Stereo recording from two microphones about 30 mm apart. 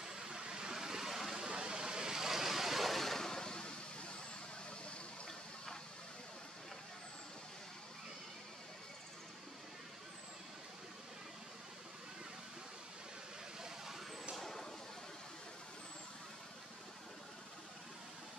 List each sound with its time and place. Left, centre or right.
0.0 s vehicle: centre
1.4 s vehicle: right
2.1 s vehicle: centre; by 3.7 s left
13.6 s vehicle: centre
14.4 s a sound: centre